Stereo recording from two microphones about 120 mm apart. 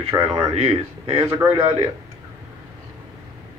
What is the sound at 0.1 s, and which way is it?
Speech, 20° right (ahead or behind).